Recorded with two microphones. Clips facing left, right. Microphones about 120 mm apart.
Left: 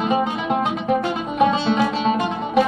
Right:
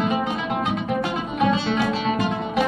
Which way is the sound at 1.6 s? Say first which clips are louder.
Left 3 dB; 25° left (ahead or behind).